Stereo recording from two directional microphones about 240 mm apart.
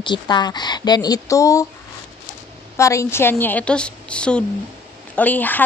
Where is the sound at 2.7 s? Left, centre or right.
Centre.